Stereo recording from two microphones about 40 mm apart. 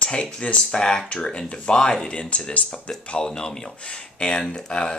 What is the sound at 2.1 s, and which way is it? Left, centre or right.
Speech, left.